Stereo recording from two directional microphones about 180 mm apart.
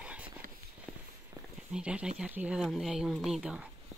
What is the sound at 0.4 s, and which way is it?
Walk, 50° right (ahead or behind).